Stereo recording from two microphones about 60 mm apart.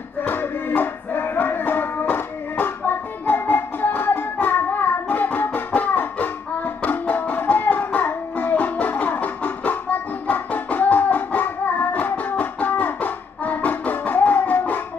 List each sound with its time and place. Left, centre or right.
0.2 s music: left